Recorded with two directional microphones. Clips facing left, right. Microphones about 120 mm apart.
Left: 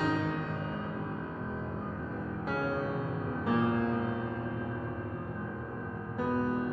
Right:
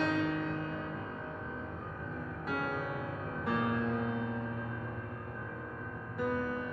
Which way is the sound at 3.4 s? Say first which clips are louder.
Left 4 dB; 25° left (ahead or behind).